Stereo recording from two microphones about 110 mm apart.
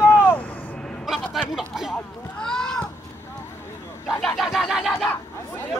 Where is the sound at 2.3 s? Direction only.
5° left (ahead or behind).